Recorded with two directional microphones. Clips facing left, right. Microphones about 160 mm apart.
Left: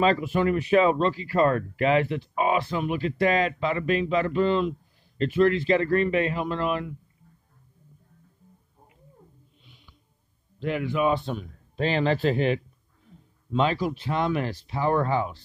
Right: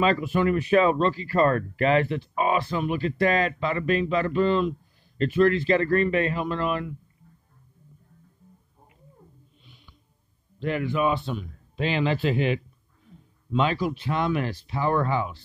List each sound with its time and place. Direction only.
0.0 s speech: 25° left (ahead or behind)
10.6 s speech: 5° left (ahead or behind)
11.1 s speech: 50° left (ahead or behind)